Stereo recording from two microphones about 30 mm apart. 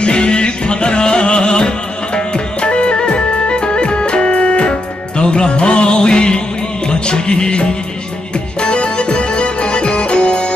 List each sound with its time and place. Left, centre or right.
0.0 s music: left